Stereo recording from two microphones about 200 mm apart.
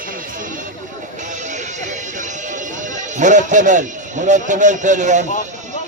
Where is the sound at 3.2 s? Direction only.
40° right (ahead or behind).